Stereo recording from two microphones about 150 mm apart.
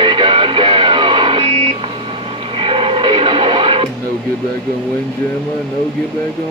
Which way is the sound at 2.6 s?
35° right (ahead or behind).